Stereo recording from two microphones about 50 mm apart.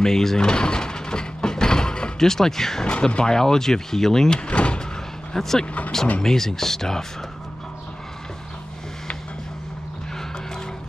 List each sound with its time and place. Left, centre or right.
0.0 s door: centre
2.9 s speech: left
4.5 s door: left
5.3 s speech: centre